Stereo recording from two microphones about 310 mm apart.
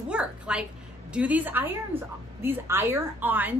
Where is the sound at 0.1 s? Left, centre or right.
Centre.